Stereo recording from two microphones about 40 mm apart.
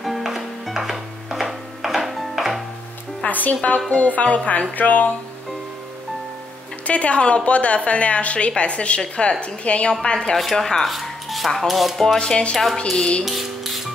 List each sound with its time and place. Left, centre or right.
0.0 s music: centre
3.3 s a woman's voice: left
6.9 s a woman's voice: left
10.0 s a woman's voice: left
10.3 s speech: centre
10.8 s music: centre
12.2 s a woman's voice: left
13.2 s music: centre